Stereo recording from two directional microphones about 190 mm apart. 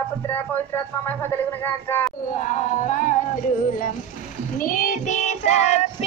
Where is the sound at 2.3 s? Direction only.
40° left (ahead or behind).